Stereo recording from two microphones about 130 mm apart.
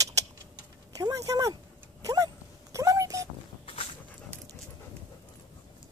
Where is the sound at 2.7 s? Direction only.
25° right (ahead or behind).